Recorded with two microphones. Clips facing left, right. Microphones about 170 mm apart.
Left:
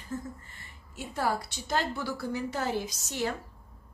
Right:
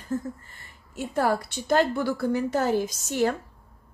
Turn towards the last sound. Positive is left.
turn(degrees=-50)  # may be behind; listen again after turning